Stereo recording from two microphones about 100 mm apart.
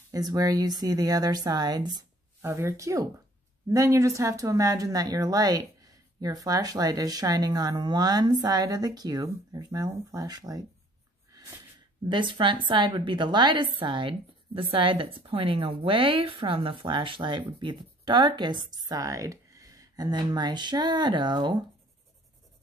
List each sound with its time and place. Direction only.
0.1 s speech: 35° right (ahead or behind)
2.4 s speech: 30° right (ahead or behind)
11.3 s a sound: 40° right (ahead or behind)
12.1 s a woman's voice: 55° right (ahead or behind)